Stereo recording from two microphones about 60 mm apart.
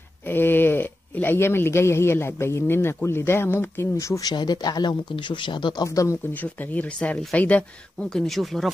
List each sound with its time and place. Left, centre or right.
0.3 s speech: left
4.1 s speech: left
5.7 s speech: left
6.4 s speech: left
8.1 s speech: centre